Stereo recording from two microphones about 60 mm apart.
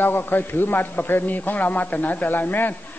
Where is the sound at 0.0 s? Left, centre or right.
Left.